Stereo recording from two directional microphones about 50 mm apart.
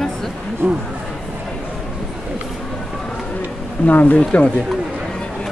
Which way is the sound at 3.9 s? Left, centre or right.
Left.